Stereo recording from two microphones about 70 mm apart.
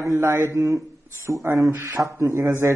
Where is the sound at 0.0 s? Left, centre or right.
Right.